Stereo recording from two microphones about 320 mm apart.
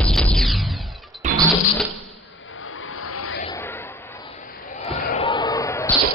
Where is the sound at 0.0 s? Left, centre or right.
Centre.